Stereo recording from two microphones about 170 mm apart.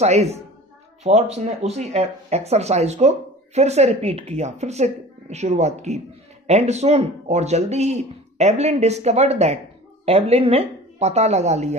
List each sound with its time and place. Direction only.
0.0 s speech: 40° right (ahead or behind)